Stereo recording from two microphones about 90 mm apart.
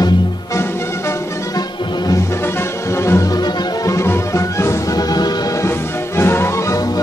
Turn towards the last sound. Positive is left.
turn(degrees=30)  # may be behind; listen again after turning